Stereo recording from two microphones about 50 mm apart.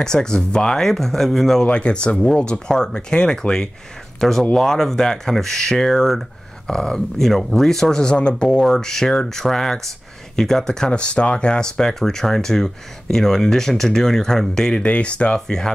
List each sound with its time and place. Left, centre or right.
0.0 s speech: centre
1.7 s speech: left
10.9 s speech: left
15.4 s speech: centre